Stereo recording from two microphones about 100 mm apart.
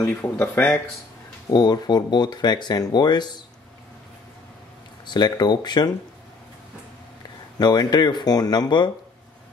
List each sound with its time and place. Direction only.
0.2 s speech: 20° left (ahead or behind)
1.5 s speech: 45° left (ahead or behind)
5.0 s speech: 45° left (ahead or behind)
7.5 s speech: 45° left (ahead or behind)